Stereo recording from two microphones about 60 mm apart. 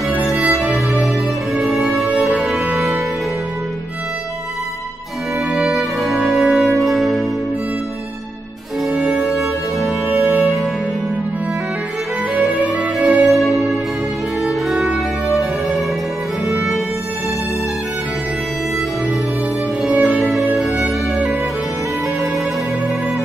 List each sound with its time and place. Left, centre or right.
1.6 s music: centre
5.5 s music: centre
8.9 s music: centre
12.4 s music: centre
13.2 s music: centre
16.4 s music: centre
19.9 s music: right
20.2 s music: centre